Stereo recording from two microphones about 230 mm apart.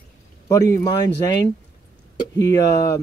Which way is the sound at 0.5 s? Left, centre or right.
Centre.